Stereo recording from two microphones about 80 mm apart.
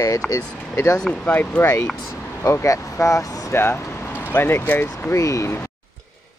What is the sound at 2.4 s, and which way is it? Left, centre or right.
Speech, left.